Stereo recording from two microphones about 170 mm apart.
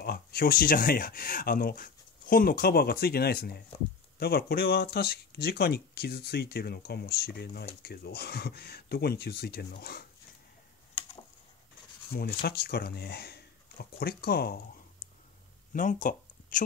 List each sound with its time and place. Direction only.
0.0 s speech: 65° left (ahead or behind)
12.1 s speech: 65° left (ahead or behind)
15.7 s a sound: 50° left (ahead or behind)